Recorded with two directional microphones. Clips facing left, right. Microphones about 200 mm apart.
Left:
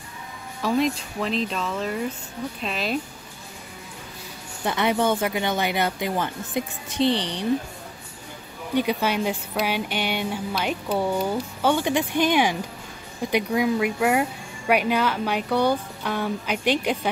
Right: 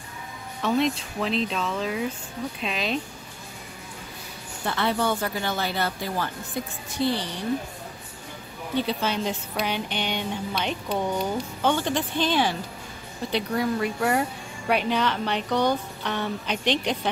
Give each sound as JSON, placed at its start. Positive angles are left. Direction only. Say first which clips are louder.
{"t": 0.6, "sound": "speech", "louder": "left 1 dB", "side_deg": 0}
{"t": 4.6, "sound": "speech", "louder": "left 3 dB", "side_deg": 20}
{"t": 8.7, "sound": "a woman's voice", "louder": "left 3 dB", "side_deg": 10}